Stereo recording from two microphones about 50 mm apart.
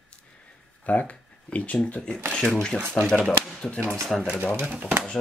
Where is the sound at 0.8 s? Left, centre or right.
Left.